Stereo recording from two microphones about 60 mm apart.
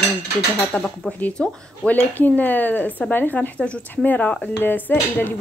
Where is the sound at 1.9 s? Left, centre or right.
Left.